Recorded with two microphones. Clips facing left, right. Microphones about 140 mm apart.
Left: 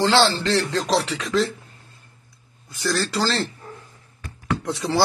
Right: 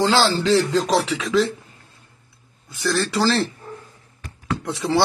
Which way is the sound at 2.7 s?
Centre (ahead or behind).